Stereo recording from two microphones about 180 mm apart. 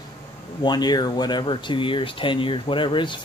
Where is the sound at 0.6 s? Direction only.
25° left (ahead or behind).